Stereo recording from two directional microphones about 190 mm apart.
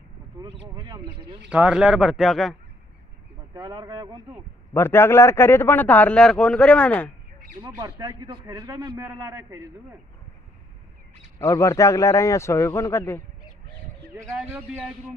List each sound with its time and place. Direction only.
0.7 s speech: 20° right (ahead or behind)
1.5 s speech: 5° right (ahead or behind)
3.6 s speech: 20° right (ahead or behind)
4.7 s a man's voice: 10° left (ahead or behind)
7.6 s a man's voice: 20° right (ahead or behind)
11.3 s a man's voice: 15° left (ahead or behind)
14.3 s speech: 5° right (ahead or behind)